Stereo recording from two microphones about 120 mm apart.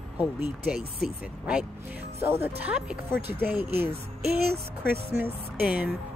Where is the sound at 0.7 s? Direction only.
Centre (ahead or behind).